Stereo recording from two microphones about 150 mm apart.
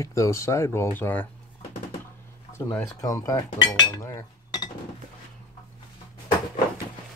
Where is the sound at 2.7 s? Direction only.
20° left (ahead or behind).